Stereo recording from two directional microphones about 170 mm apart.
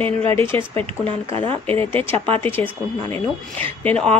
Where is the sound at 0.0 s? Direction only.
35° right (ahead or behind).